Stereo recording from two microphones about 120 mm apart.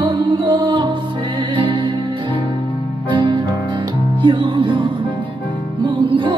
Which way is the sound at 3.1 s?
40° right (ahead or behind).